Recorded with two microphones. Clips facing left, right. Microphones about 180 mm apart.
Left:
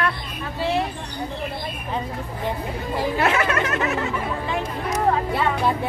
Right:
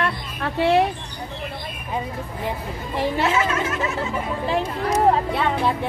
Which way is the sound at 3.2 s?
65° left (ahead or behind).